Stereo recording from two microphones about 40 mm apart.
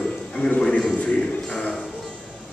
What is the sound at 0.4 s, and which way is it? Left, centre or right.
Speech, left.